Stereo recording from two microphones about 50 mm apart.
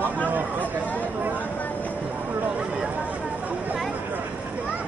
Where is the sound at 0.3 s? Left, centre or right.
Right.